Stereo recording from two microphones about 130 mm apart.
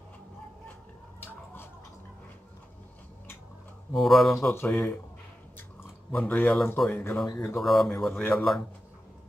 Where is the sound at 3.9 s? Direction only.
Centre (ahead or behind).